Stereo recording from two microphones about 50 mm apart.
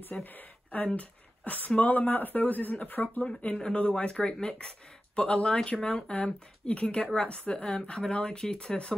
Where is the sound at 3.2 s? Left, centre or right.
Left.